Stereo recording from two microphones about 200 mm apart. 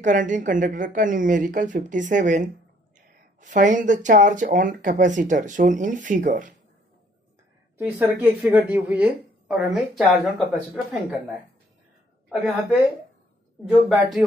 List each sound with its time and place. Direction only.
0.0 s speech: 40° right (ahead or behind)
7.7 s a woman's voice: 10° right (ahead or behind)
13.8 s a woman's voice: centre (ahead or behind)